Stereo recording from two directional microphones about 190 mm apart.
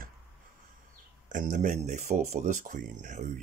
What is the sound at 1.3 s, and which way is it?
Speech, 45° right (ahead or behind).